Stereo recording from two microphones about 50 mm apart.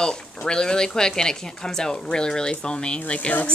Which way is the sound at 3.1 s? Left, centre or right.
Left.